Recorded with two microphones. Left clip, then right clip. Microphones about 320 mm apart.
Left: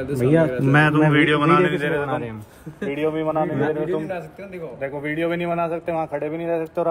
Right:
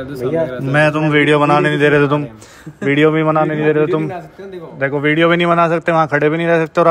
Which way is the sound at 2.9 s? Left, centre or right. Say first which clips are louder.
Right 11 dB; right.